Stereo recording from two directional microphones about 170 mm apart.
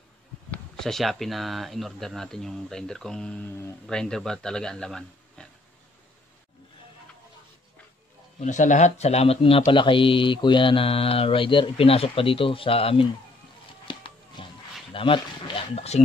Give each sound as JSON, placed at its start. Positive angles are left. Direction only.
{"t": 0.5, "sound": "speech", "side_deg": 5}
{"t": 8.4, "sound": "speech", "side_deg": 45}
{"t": 13.8, "sound": "a sound", "side_deg": 30}